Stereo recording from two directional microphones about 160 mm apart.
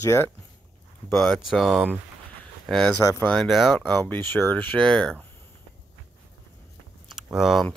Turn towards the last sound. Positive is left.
turn(degrees=0)  # may be behind; listen again after turning